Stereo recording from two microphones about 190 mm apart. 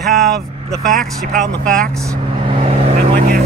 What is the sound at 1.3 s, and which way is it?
Speech, 5° left (ahead or behind).